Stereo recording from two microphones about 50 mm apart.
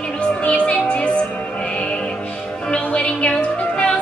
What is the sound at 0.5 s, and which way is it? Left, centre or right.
Music, left.